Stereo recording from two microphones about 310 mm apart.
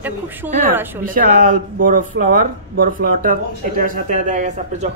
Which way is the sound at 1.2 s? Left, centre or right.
Right.